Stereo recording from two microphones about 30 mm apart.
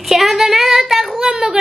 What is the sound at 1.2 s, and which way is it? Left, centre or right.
Speech, right.